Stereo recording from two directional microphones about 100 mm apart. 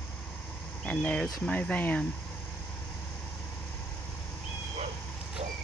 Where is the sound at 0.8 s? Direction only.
15° left (ahead or behind).